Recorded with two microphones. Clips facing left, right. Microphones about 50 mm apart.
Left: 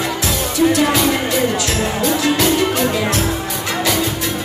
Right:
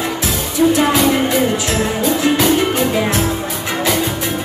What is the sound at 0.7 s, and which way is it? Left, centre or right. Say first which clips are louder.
Music: right 3 dB; centre.